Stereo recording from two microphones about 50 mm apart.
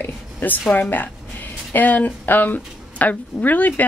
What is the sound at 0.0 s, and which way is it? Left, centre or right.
Speech, left.